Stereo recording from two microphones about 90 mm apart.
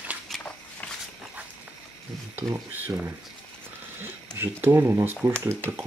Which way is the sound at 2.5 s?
20° right (ahead or behind).